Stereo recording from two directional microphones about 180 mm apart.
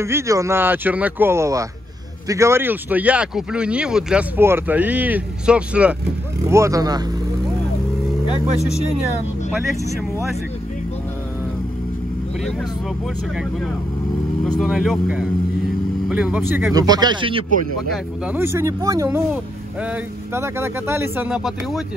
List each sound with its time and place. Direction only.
0.0 s speech: 15° right (ahead or behind)
6.5 s speech: 15° right (ahead or behind)
14.6 s speech: centre (ahead or behind); by 17.5 s 30° right (ahead or behind)
17.9 s speech: 5° right (ahead or behind)